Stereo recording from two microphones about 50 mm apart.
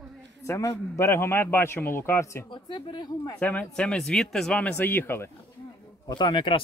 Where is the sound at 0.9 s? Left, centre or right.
Left.